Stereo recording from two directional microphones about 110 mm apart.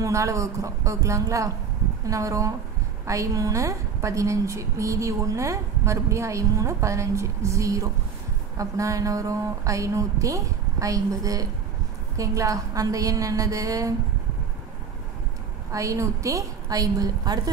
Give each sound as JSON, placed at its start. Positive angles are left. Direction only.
{"t": 0.0, "sound": "a woman's voice", "side_deg": -30}
{"t": 15.7, "sound": "a woman's voice", "side_deg": -30}